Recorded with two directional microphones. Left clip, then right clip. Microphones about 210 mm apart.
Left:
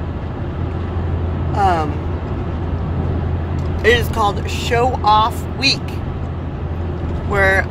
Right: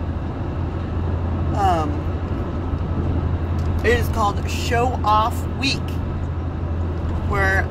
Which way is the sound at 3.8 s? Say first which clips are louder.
Left 5 dB; 25° left (ahead or behind).